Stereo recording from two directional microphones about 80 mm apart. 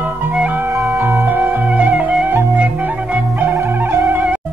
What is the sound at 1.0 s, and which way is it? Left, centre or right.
Music, right.